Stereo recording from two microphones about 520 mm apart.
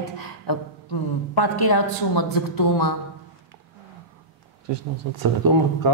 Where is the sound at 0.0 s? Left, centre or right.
Left.